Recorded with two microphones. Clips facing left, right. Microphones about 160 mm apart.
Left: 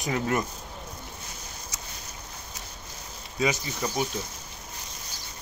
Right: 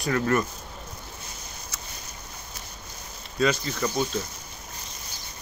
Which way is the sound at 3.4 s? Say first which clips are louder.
Right 3 dB; 15° left (ahead or behind).